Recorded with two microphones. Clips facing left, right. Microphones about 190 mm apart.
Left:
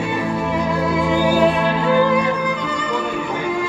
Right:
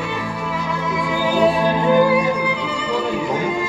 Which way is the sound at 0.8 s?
25° left (ahead or behind).